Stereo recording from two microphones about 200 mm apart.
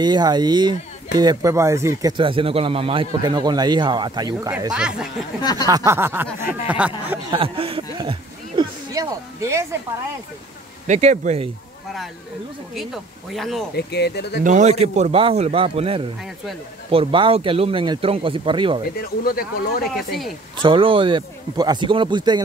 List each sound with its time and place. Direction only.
0.0 s speech: 20° right (ahead or behind)
4.7 s speech: 5° right (ahead or behind)
5.4 s a sound: 20° left (ahead or behind)
5.7 s speech: 10° right (ahead or behind)
7.2 s speech: 25° right (ahead or behind)
10.9 s a man's voice: 35° right (ahead or behind)
12.7 s speech: centre (ahead or behind)
13.7 s speech: 55° left (ahead or behind)
14.4 s a man's voice: 35° right (ahead or behind)
18.9 s speech: 50° left (ahead or behind)
20.5 s speech: 25° right (ahead or behind)